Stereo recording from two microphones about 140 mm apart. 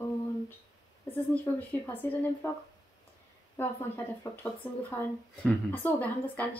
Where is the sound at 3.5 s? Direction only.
15° left (ahead or behind).